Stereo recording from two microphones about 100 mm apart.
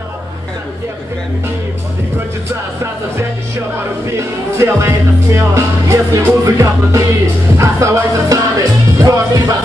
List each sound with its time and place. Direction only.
4.2 s speech: 30° right (ahead or behind)
7.5 s music: 30° right (ahead or behind)